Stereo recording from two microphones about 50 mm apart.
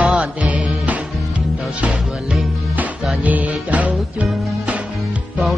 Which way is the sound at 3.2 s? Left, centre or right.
Right.